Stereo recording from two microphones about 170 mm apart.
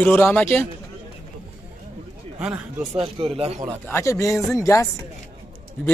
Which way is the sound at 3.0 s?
35° right (ahead or behind).